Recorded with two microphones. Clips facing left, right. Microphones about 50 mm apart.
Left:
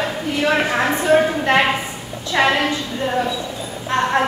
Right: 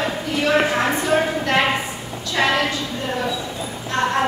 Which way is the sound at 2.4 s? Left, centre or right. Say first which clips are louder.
Left 3 dB; left.